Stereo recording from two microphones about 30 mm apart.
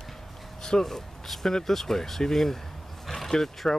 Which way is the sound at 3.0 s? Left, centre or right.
Centre.